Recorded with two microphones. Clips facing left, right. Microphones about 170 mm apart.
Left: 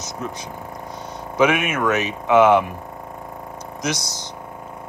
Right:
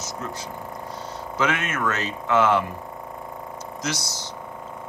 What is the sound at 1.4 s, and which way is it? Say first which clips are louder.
Speech: left 7 dB; 15° left (ahead or behind).